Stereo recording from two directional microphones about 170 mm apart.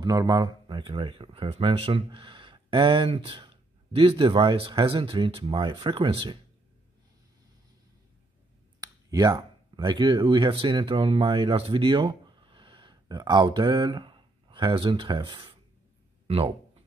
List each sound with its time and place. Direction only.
0.0 s speech: 25° right (ahead or behind)
8.8 s speech: 25° right (ahead or behind)